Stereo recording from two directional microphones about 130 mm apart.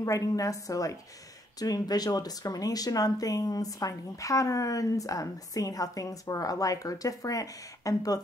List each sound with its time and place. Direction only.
0.0 s speech: 25° left (ahead or behind)